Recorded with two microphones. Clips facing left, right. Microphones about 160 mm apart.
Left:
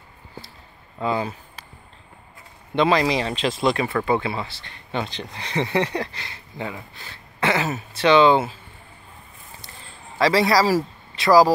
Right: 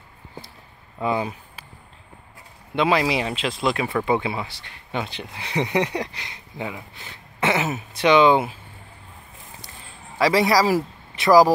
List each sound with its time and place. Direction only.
0.9 s a sound: 15° right (ahead or behind)
2.7 s speech: 5° right (ahead or behind)
4.0 s speech: 15° right (ahead or behind)
10.1 s a man's voice: 15° right (ahead or behind)